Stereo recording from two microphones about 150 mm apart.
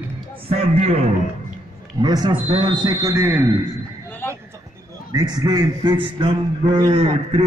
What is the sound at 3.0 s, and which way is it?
Speech, 15° right (ahead or behind).